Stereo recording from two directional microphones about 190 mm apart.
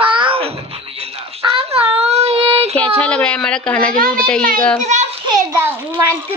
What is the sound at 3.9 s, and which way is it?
Speech, 50° right (ahead or behind).